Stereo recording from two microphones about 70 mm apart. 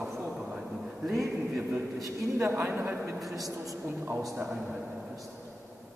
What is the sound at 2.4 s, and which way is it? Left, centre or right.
Speech, right.